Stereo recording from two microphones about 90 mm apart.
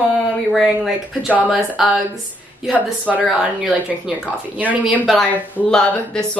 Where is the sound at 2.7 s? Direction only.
15° right (ahead or behind).